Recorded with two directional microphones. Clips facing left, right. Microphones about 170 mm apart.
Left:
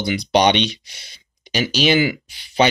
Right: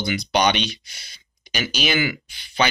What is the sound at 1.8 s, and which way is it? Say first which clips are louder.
Speech: left 6 dB; 30° left (ahead or behind).